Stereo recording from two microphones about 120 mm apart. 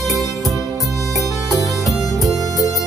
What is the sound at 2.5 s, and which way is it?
Music, 30° left (ahead or behind).